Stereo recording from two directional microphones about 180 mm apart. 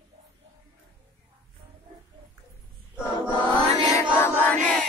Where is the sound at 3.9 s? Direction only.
15° left (ahead or behind).